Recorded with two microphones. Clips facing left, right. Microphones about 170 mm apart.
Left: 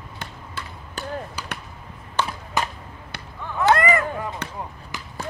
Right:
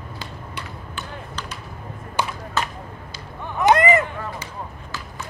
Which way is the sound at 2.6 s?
15° left (ahead or behind).